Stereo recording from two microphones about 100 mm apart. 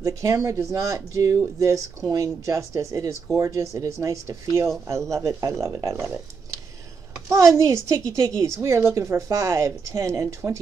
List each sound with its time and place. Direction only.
0.0 s speech: 35° right (ahead or behind)
7.2 s a woman's voice: 30° right (ahead or behind)